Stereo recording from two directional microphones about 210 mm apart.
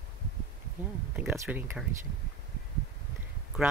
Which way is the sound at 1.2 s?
5° right (ahead or behind).